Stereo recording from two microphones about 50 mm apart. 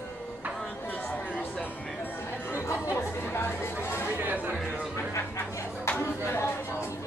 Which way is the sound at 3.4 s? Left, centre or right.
Left.